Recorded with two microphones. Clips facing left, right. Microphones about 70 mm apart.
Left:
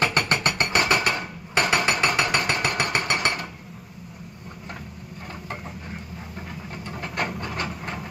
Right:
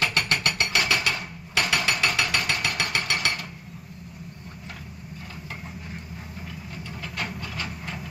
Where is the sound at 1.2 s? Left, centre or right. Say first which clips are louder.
Left 4 dB; left.